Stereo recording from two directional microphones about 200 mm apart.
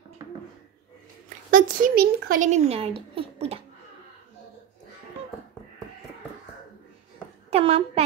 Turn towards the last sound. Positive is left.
turn(degrees=-30)  # may be behind; listen again after turning